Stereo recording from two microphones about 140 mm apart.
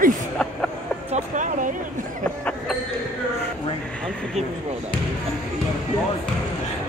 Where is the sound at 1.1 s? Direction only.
65° right (ahead or behind).